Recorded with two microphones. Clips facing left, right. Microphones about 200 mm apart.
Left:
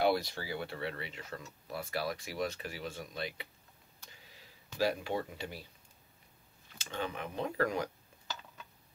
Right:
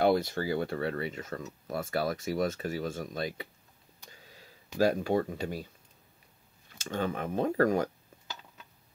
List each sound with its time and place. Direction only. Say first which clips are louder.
0.0 s speech: right 5 dB; 50° right (ahead or behind)
4.7 s speech: right 7 dB; 45° right (ahead or behind)
6.8 s speech: right 6 dB; 45° right (ahead or behind)